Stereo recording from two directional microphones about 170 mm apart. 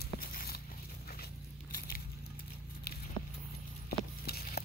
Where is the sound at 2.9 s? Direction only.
70° left (ahead or behind).